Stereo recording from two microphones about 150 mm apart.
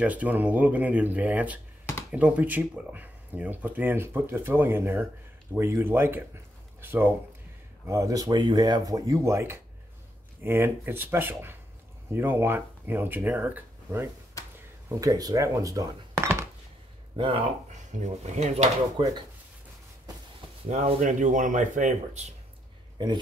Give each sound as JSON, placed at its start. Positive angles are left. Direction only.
{"t": 0.0, "sound": "speech", "side_deg": -10}
{"t": 14.9, "sound": "speech", "side_deg": -25}
{"t": 17.2, "sound": "speech", "side_deg": -35}
{"t": 18.2, "sound": "speech", "side_deg": -50}
{"t": 19.0, "sound": "speech", "side_deg": -35}
{"t": 20.6, "sound": "speech", "side_deg": -40}
{"t": 21.0, "sound": "speech", "side_deg": -55}